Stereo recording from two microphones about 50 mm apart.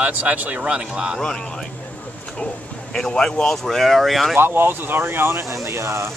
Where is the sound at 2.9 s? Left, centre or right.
Centre.